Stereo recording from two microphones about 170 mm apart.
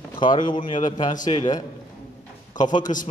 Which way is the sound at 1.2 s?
40° left (ahead or behind).